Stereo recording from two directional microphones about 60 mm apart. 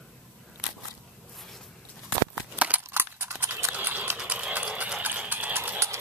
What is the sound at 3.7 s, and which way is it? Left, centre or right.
Horse, right.